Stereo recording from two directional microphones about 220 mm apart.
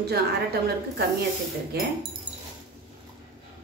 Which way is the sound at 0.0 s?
45° right (ahead or behind).